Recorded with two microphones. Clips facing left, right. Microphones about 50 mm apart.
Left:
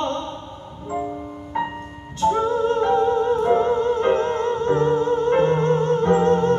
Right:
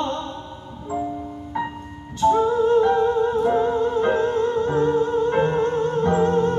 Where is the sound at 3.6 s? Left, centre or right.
Left.